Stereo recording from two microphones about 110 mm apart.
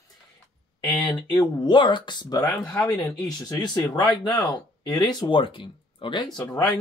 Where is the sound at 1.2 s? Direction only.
40° left (ahead or behind).